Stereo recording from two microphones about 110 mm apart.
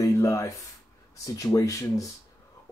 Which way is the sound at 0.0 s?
30° left (ahead or behind).